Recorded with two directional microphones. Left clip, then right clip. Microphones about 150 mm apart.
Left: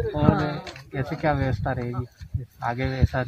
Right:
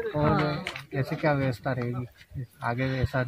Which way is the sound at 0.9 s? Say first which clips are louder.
Left 2 dB; 55° right (ahead or behind).